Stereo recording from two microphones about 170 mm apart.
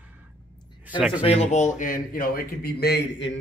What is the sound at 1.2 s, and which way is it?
Speech, 40° left (ahead or behind).